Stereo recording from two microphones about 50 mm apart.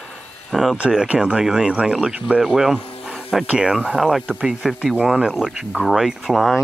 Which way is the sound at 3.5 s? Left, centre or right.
Centre.